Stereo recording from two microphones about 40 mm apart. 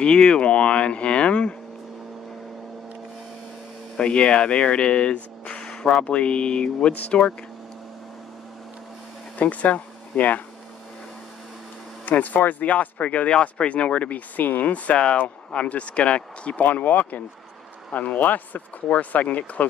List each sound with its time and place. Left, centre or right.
0.0 s speech: left
4.0 s speech: left
9.4 s speech: left
12.1 s speech: left
13.3 s speech: left
16.6 s speech: left